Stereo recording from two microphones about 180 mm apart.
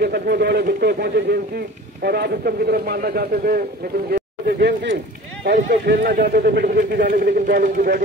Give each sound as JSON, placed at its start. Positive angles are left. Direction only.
{"t": 0.0, "sound": "a man's voice", "side_deg": -65}
{"t": 6.0, "sound": "a man's voice", "side_deg": -55}